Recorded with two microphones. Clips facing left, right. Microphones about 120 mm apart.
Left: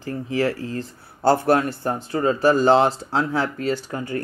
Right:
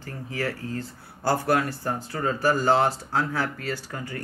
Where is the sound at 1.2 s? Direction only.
25° left (ahead or behind).